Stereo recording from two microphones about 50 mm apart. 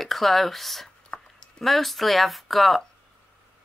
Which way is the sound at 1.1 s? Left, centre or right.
Left.